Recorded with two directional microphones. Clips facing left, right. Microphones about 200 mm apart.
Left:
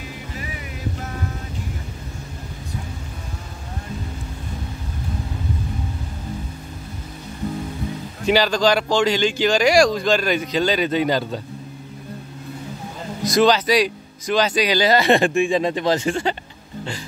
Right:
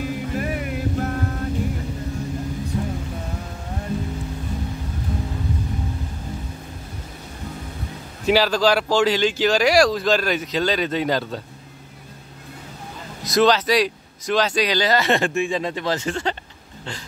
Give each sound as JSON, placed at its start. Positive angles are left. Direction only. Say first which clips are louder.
{"t": 0.3, "sound": "music", "louder": "right 8 dB", "side_deg": -55}
{"t": 8.3, "sound": "speech", "louder": "even", "side_deg": -5}
{"t": 13.2, "sound": "speech", "louder": "left 1 dB", "side_deg": 0}